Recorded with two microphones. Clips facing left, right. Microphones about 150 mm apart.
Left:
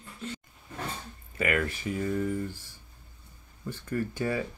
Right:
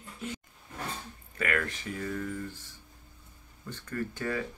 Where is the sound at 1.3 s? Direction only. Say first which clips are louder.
Left 3 dB; 10° left (ahead or behind).